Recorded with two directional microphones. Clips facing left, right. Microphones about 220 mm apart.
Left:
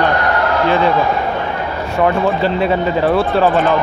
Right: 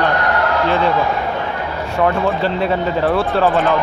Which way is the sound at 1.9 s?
10° left (ahead or behind).